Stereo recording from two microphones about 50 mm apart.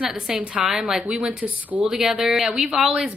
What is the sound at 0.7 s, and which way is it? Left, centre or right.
Speech, centre.